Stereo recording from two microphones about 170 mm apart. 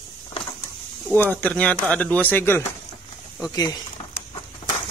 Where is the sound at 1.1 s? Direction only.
10° left (ahead or behind).